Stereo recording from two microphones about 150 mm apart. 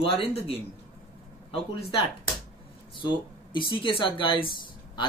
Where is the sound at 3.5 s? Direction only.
35° left (ahead or behind).